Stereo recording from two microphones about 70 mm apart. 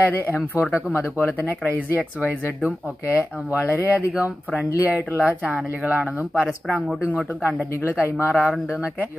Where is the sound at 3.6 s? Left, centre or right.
Left.